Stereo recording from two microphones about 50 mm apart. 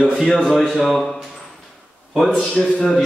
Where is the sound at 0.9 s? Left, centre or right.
Centre.